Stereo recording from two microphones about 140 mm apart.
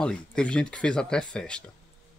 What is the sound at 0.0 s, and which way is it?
Speech, 5° left (ahead or behind).